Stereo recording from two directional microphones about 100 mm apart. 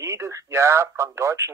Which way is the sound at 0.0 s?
30° right (ahead or behind).